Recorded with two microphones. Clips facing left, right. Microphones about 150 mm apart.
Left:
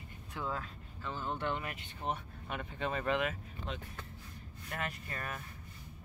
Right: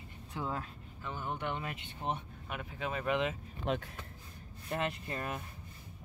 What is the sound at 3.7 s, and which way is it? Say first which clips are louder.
Speech: right 9 dB; 65° right (ahead or behind).